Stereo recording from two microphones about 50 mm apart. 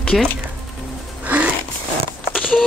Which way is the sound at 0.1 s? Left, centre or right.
Centre.